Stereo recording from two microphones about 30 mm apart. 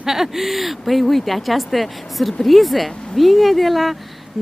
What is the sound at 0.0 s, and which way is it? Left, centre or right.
Speech, centre.